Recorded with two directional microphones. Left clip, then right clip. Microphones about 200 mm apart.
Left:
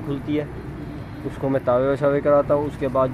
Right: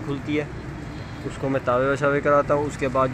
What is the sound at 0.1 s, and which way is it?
Speech, 5° left (ahead or behind).